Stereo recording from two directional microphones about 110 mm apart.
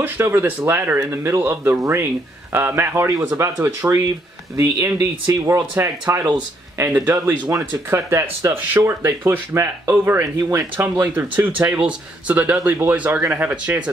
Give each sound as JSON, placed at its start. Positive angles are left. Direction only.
{"t": 0.0, "sound": "speech", "side_deg": -20}